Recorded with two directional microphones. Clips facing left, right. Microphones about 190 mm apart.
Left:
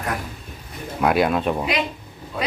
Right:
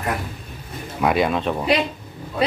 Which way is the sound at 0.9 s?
Centre (ahead or behind).